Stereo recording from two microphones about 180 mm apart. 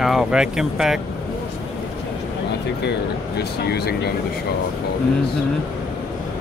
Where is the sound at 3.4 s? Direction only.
65° left (ahead or behind).